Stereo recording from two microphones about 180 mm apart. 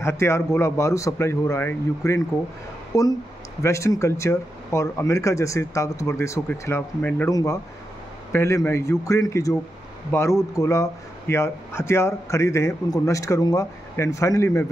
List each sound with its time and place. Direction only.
0.0 s speech: 15° left (ahead or behind)